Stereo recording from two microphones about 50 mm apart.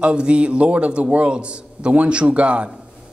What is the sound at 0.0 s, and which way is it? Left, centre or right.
A man's voice, right.